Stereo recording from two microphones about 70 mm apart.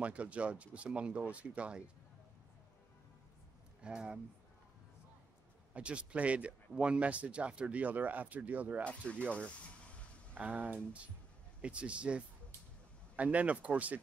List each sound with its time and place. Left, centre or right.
0.0 s speech: centre
3.8 s speech: centre
5.7 s speech: centre
9.0 s speech: centre
10.3 s speech: right